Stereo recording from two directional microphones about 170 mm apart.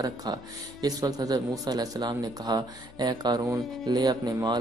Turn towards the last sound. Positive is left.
turn(degrees=-20)  # may be behind; listen again after turning